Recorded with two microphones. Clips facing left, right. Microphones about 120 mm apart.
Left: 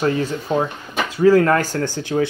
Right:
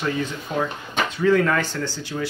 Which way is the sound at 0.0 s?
40° left (ahead or behind).